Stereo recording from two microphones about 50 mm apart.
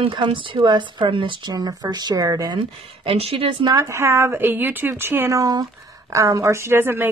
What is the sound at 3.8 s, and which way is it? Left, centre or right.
Speech, right.